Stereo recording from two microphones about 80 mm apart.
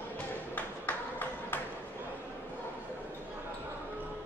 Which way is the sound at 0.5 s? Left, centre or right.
Left.